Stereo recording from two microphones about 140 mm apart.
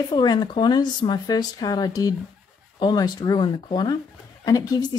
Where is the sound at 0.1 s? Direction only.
30° left (ahead or behind).